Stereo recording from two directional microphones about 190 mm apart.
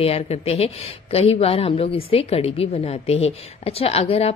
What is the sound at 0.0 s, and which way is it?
A woman's voice, 30° left (ahead or behind).